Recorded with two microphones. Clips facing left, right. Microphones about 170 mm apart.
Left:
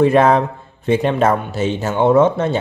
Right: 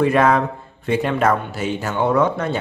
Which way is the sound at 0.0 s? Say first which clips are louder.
Left 3 dB; 25° left (ahead or behind).